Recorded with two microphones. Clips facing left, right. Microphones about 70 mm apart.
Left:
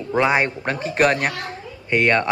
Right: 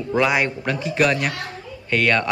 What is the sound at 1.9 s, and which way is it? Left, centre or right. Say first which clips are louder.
Speech: left 1 dB; left.